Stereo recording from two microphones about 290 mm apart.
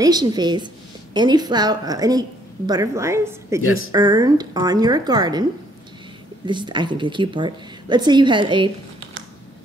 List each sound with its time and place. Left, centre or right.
0.0 s a woman's voice: centre
3.6 s speech: left
3.9 s a woman's voice: centre
6.4 s a woman's voice: centre